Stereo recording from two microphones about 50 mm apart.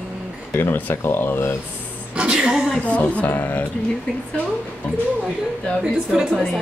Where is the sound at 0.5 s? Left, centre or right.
Left.